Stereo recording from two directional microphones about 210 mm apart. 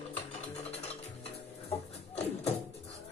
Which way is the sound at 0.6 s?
30° left (ahead or behind).